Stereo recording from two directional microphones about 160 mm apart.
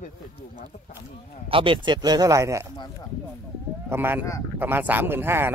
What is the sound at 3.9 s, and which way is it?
Speech, 15° right (ahead or behind).